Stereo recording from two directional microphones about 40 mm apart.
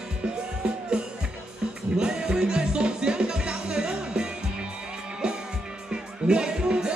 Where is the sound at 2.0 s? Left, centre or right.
Centre.